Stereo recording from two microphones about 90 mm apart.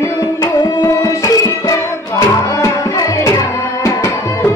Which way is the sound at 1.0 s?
35° left (ahead or behind).